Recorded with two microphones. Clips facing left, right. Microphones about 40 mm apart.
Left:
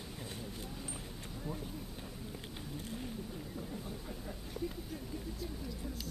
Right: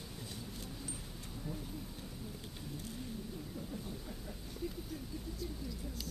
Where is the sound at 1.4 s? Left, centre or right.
Centre.